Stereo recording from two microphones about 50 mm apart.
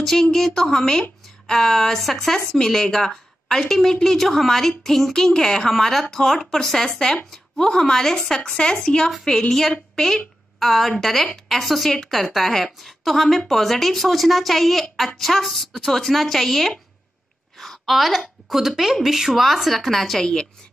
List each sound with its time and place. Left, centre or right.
0.0 s a woman's voice: centre